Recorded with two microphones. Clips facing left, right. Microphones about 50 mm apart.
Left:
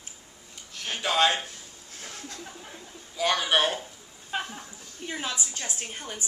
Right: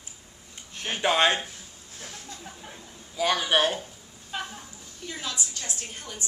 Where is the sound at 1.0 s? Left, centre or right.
Right.